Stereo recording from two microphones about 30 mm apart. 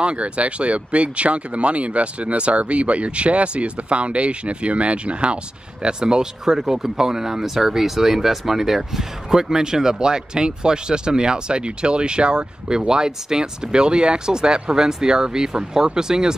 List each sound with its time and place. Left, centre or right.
0.0 s speech: right
6.4 s speech: centre